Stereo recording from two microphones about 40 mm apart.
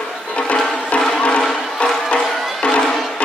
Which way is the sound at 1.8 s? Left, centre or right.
Left.